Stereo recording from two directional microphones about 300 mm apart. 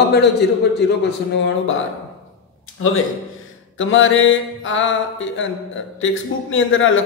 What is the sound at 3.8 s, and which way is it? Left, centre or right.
A man's voice, left.